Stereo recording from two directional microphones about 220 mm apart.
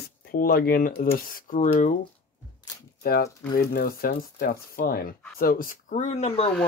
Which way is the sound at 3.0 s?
45° left (ahead or behind).